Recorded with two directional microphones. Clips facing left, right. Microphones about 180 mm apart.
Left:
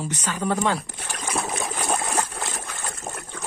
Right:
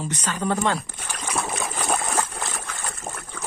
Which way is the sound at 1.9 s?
10° left (ahead or behind).